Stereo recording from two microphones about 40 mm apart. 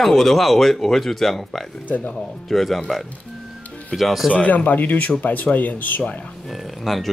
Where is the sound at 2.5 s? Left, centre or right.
Centre.